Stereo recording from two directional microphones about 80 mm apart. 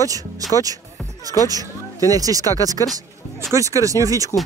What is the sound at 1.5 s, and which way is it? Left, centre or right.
Speech, right.